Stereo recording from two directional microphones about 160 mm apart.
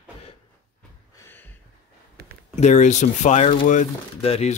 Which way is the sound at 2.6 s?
45° left (ahead or behind).